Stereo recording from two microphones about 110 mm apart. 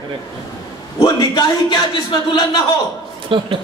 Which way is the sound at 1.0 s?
40° left (ahead or behind).